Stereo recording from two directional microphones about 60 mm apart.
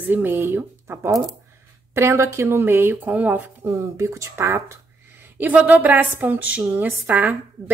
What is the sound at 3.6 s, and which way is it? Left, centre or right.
Speech, right.